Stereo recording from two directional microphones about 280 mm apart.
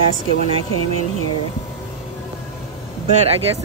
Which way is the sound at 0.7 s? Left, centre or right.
Right.